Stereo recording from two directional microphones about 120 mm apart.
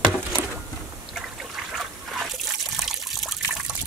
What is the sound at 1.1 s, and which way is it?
Trickle, centre (ahead or behind).